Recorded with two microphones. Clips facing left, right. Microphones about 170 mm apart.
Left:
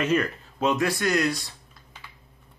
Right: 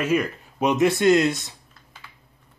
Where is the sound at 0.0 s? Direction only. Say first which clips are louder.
Right 1 dB; 10° right (ahead or behind).